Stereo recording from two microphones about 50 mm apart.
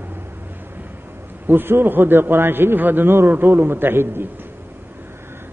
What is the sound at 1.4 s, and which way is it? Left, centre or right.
A man's voice, right.